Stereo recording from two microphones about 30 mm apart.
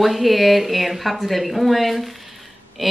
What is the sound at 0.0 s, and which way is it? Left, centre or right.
Speech, centre.